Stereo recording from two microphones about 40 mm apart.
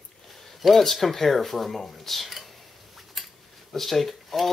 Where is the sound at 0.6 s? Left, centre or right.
Centre.